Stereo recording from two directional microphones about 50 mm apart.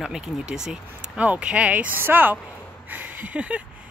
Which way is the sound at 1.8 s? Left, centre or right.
Right.